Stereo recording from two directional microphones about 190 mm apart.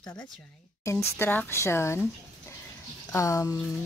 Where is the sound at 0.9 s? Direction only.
10° left (ahead or behind).